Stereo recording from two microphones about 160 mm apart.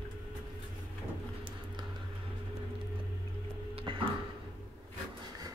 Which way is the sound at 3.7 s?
35° right (ahead or behind).